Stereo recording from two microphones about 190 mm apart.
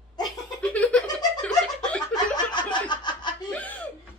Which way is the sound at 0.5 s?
5° left (ahead or behind).